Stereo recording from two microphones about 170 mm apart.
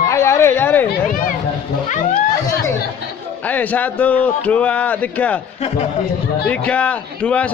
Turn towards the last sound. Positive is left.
turn(degrees=5)  # may be behind; listen again after turning